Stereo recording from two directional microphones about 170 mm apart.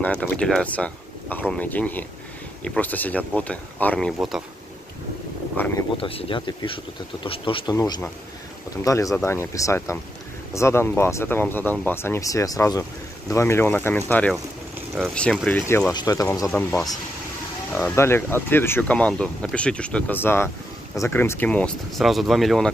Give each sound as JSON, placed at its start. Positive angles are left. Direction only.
{"t": 0.2, "sound": "speech", "side_deg": 5}
{"t": 5.6, "sound": "speech", "side_deg": 10}
{"t": 5.9, "sound": "speech", "side_deg": 35}
{"t": 15.9, "sound": "speech", "side_deg": 20}